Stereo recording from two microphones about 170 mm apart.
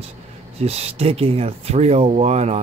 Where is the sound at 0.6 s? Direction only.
35° right (ahead or behind).